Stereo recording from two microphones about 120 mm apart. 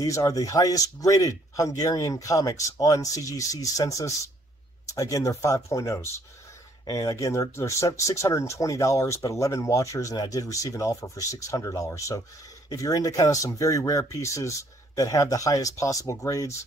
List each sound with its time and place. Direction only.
0.0 s speech: 25° left (ahead or behind)